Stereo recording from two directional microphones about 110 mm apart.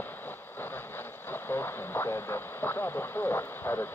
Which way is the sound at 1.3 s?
20° left (ahead or behind).